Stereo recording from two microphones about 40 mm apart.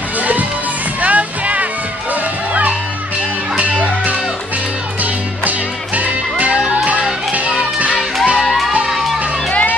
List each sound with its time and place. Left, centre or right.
0.2 s music: right
3.5 s music: right
5.9 s music: right
9.5 s run: left